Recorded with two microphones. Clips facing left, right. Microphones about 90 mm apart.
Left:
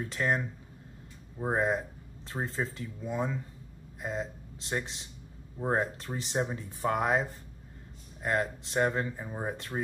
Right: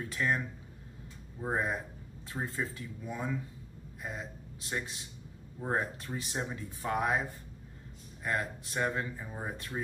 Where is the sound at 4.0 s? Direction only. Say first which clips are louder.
Left 6 dB; 25° left (ahead or behind).